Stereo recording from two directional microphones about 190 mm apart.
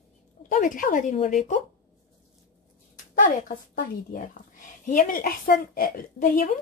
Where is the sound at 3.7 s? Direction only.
45° left (ahead or behind).